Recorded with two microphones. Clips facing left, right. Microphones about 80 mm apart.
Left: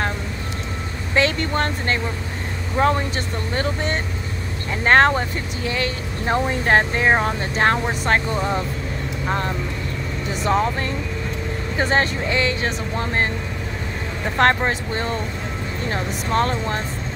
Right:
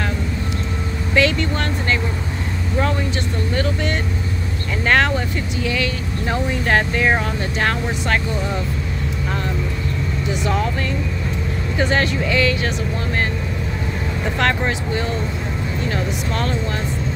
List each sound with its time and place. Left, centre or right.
1.1 s speech: left
10.4 s speech: left
14.4 s speech: left